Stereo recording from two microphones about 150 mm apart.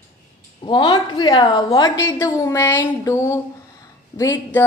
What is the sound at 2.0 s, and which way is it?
A woman's voice, 20° left (ahead or behind).